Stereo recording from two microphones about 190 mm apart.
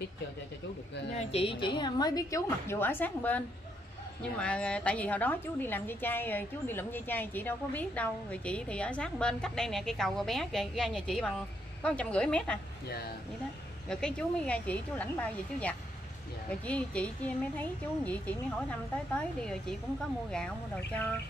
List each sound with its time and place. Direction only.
1.1 s a woman's voice: 30° left (ahead or behind); by 12.5 s 5° left (ahead or behind)
12.8 s speech: 55° left (ahead or behind)
13.8 s speech: 5° left (ahead or behind)
20.2 s a woman's voice: 5° left (ahead or behind)